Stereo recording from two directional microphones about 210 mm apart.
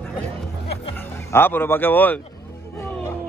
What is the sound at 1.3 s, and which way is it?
Speech, 10° left (ahead or behind).